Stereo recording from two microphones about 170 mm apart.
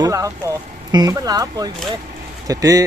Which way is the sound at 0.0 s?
20° right (ahead or behind).